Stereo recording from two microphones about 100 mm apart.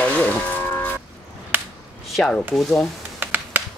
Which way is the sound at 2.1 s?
Centre (ahead or behind).